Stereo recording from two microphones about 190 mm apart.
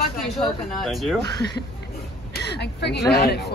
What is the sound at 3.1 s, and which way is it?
Speech, 60° left (ahead or behind).